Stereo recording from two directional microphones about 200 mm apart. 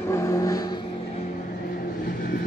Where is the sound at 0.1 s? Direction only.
15° left (ahead or behind).